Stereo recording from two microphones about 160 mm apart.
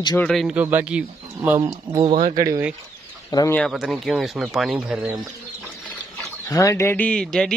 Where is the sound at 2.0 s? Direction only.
45° right (ahead or behind).